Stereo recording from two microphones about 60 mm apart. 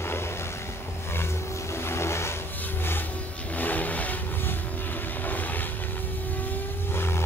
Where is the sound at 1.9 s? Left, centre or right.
Left.